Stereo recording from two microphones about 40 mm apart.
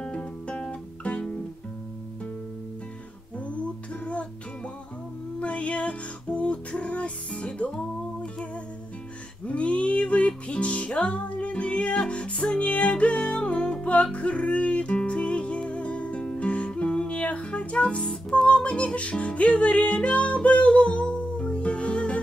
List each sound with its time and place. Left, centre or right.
0.0 s guitar: left
3.3 s music: left
5.4 s music: left
9.5 s music: left